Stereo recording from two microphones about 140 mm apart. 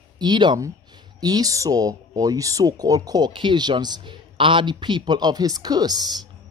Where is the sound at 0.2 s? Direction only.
30° right (ahead or behind).